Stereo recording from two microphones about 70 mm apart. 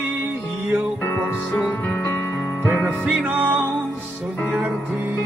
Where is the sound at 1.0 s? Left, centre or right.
Left.